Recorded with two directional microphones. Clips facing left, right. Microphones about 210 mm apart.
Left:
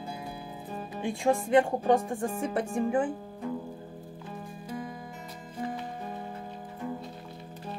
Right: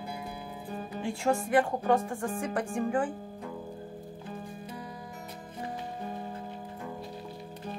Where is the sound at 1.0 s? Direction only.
15° left (ahead or behind).